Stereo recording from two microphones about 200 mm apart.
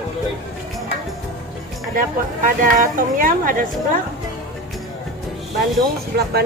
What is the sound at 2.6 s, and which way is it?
Speech, 40° right (ahead or behind).